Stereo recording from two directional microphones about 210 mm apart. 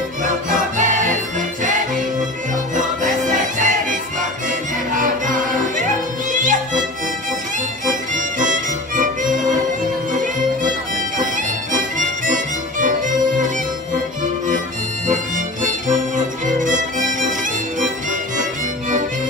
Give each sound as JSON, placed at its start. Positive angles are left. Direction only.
{"t": 0.2, "sound": "music", "side_deg": -40}
{"t": 2.7, "sound": "music", "side_deg": -35}
{"t": 7.8, "sound": "music", "side_deg": -35}
{"t": 11.1, "sound": "music", "side_deg": -40}
{"t": 15.0, "sound": "music", "side_deg": -35}
{"t": 16.4, "sound": "violin", "side_deg": -35}